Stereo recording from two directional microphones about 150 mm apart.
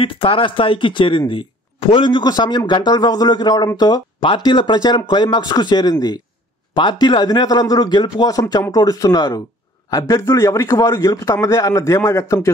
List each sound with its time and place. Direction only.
0.0 s a man's voice: 35° left (ahead or behind); by 12.4 s 20° left (ahead or behind)